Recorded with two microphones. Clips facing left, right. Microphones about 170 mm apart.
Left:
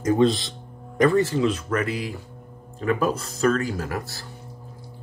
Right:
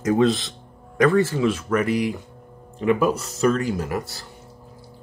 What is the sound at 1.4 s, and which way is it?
Speech, 10° right (ahead or behind).